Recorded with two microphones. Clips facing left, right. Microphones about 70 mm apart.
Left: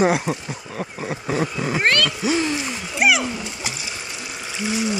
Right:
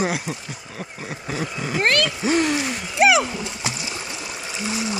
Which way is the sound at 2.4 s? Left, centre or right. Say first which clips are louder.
Right 2 dB; right.